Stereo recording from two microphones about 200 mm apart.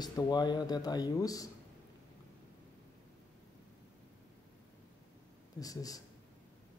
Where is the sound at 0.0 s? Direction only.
20° left (ahead or behind).